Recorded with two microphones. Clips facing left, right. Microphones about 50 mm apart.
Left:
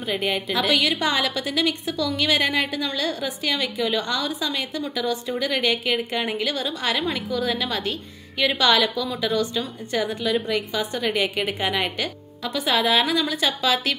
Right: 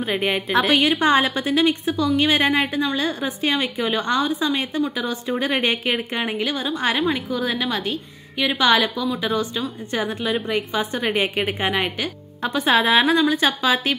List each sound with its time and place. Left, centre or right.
0.0 s a woman's voice: right
10.5 s a woman's voice: right
12.4 s a woman's voice: right